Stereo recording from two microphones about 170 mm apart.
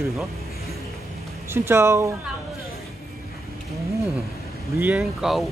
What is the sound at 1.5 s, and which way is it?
Speech, 15° right (ahead or behind).